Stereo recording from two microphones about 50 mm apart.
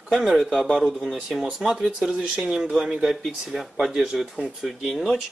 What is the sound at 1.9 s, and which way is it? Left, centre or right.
Speech, centre.